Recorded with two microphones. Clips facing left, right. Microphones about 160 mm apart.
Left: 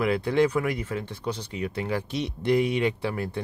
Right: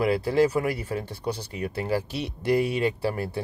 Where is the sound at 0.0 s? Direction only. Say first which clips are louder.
Right 1 dB; 35° right (ahead or behind).